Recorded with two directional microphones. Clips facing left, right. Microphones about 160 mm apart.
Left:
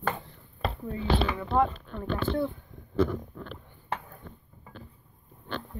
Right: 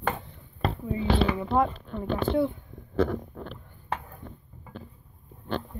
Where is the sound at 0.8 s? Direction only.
10° right (ahead or behind).